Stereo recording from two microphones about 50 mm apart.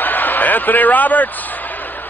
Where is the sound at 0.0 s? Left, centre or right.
Left.